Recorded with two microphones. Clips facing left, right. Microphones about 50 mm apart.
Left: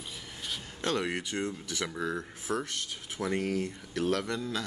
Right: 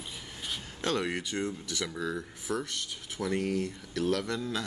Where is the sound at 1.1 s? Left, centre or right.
Left.